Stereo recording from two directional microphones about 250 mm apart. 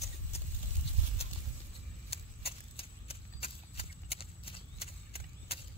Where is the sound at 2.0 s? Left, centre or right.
Left.